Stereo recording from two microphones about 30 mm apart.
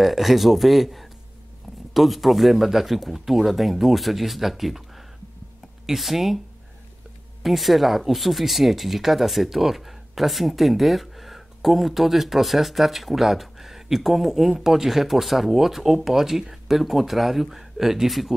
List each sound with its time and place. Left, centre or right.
0.0 s speech: centre
7.4 s speech: centre